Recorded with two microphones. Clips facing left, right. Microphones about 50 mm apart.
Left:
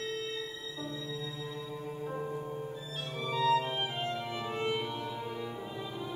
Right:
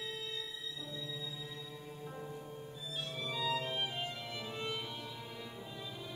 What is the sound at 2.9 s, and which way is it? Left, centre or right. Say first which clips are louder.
Music: left 6 dB; centre.